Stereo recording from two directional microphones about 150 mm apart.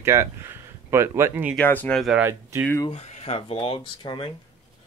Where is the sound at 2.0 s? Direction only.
Centre (ahead or behind).